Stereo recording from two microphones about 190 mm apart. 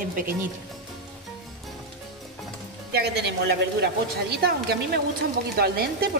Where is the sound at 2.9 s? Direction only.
60° right (ahead or behind).